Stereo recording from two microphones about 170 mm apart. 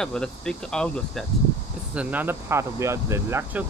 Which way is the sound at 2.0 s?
10° right (ahead or behind).